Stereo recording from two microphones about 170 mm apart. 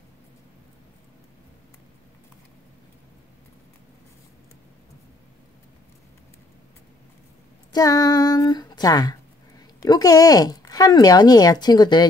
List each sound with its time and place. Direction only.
7.7 s speech: 20° left (ahead or behind)